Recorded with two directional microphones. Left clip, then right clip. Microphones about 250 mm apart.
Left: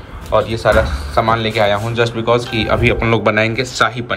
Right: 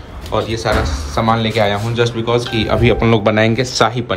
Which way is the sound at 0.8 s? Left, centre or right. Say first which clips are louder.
Left 3 dB; right.